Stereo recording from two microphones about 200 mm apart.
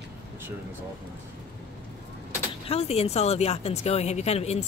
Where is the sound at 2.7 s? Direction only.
30° left (ahead or behind).